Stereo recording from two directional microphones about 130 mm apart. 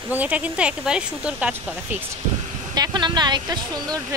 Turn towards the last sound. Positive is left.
turn(degrees=-35)  # may be behind; listen again after turning